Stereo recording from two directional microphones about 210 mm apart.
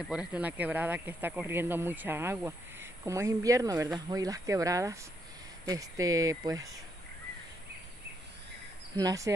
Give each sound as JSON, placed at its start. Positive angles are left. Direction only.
{"t": 0.1, "sound": "speech", "side_deg": -5}
{"t": 8.9, "sound": "speech", "side_deg": -15}